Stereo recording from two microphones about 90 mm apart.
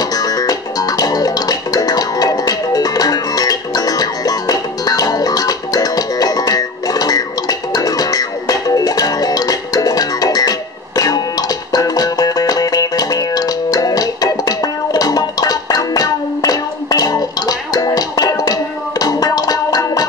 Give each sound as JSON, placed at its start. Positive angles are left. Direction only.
{"t": 0.0, "sound": "music", "side_deg": 45}